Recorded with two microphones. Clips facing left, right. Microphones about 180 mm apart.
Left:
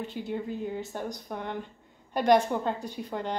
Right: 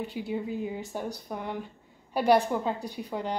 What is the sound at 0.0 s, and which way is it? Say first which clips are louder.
A woman's voice: right 1 dB; 10° right (ahead or behind).